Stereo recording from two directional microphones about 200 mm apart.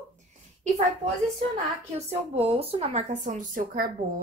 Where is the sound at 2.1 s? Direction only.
30° right (ahead or behind).